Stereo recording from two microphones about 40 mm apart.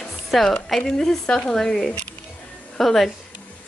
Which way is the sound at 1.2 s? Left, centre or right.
Left.